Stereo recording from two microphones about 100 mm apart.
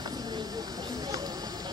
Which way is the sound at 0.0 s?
40° right (ahead or behind).